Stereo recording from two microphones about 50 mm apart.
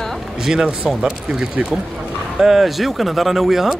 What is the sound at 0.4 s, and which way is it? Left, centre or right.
Speech, centre.